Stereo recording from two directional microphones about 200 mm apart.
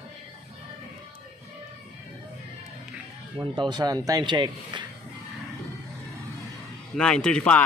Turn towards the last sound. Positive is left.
turn(degrees=5)  # may be behind; listen again after turning